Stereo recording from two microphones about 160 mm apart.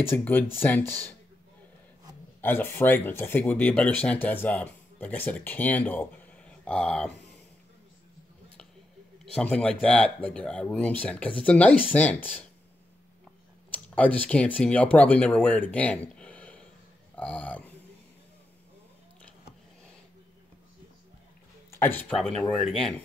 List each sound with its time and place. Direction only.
0.1 s speech: 10° left (ahead or behind)
2.4 s speech: 15° left (ahead or behind)
7.1 s a sound: 90° left
9.2 s speech: 5° left (ahead or behind)
13.7 s speech: 10° left (ahead or behind)
21.6 s a sound: 15° left (ahead or behind)
22.1 s speech: 5° left (ahead or behind)